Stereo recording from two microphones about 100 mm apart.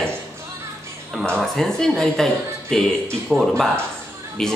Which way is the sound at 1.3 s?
5° left (ahead or behind).